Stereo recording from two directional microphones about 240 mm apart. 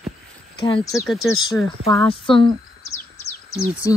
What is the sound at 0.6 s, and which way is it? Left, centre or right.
Speech, centre.